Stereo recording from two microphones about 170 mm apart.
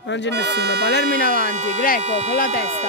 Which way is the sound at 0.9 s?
75° left (ahead or behind).